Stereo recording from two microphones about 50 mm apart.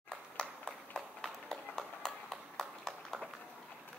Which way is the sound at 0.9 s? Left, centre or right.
Centre.